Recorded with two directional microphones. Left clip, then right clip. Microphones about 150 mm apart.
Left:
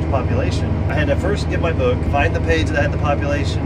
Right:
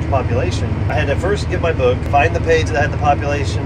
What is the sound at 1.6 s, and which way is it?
Speech, 10° left (ahead or behind).